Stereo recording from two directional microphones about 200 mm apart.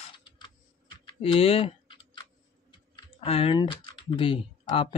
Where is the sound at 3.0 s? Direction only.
25° left (ahead or behind).